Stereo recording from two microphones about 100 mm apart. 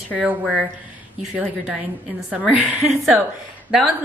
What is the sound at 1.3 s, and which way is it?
A woman's voice, 15° right (ahead or behind).